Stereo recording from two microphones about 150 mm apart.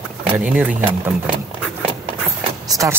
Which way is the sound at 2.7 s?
20° right (ahead or behind).